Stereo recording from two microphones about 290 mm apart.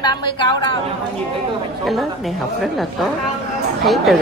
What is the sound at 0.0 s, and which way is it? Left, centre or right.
Speech, centre.